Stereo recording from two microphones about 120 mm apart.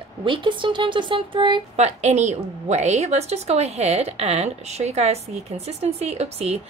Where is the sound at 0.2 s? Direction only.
45° right (ahead or behind).